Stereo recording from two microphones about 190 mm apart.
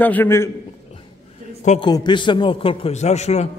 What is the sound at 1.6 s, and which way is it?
Speech, 35° left (ahead or behind).